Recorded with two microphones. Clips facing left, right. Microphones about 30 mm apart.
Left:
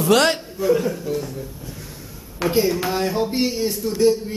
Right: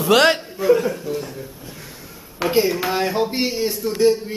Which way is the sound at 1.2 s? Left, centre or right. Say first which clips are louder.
Left 1 dB; centre.